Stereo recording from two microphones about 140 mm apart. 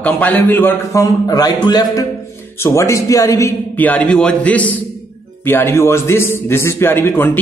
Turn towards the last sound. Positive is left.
turn(degrees=15)  # may be behind; listen again after turning